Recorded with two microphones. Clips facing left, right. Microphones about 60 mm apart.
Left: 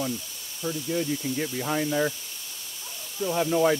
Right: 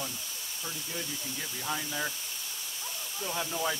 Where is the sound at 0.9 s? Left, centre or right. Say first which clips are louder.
Left 12 dB; left.